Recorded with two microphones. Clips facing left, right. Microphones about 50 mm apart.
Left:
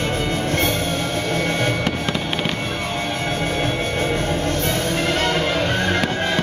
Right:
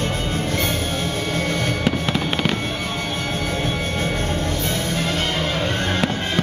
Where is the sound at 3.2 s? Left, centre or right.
Left.